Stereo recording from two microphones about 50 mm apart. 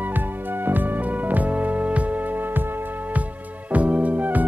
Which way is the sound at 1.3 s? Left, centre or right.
Right.